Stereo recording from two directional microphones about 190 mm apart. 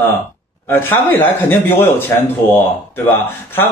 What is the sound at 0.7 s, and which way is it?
Speech, 10° left (ahead or behind).